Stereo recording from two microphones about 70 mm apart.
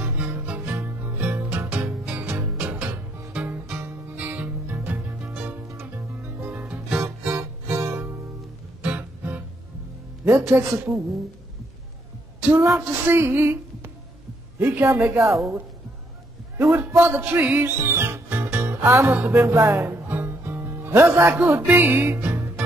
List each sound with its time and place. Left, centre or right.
0.0 s music: right
5.7 s music: right
6.5 s music: right
10.2 s speech: right
12.4 s a woman's voice: right
13.0 s music: right
14.6 s speech: right
16.5 s a man's voice: right
17.2 s music: right
17.6 s music: right
19.1 s music: right